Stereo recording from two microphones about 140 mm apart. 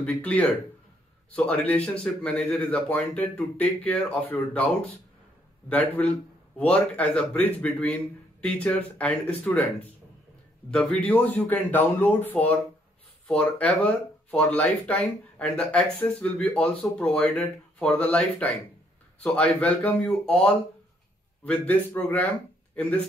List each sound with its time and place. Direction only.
0.0 s speech: 10° left (ahead or behind)
5.7 s speech: 10° left (ahead or behind)
10.7 s speech: 5° left (ahead or behind)